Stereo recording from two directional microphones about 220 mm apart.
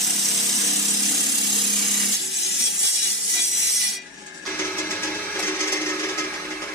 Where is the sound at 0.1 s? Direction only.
Centre (ahead or behind).